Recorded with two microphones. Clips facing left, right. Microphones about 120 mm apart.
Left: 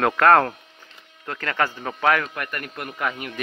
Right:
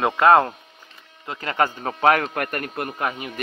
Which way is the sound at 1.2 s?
20° right (ahead or behind).